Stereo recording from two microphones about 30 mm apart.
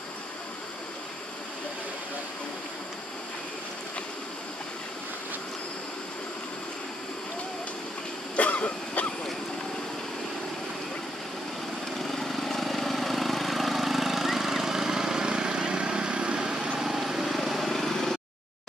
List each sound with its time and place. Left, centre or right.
8.4 s cough: left
12.0 s vehicle: centre; by 16.4 s right
16.7 s vehicle: centre
17.1 s vehicle: centre
17.6 s vehicle: centre